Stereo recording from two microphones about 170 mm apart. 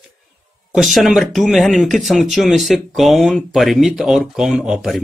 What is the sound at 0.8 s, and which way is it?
A man's voice, centre (ahead or behind).